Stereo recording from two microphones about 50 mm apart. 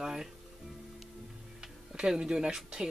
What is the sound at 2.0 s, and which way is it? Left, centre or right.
Speech, centre.